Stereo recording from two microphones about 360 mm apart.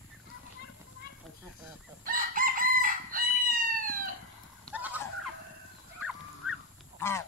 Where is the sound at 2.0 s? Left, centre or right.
Right.